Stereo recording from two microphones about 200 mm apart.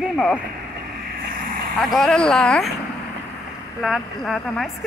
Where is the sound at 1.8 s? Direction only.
Centre (ahead or behind).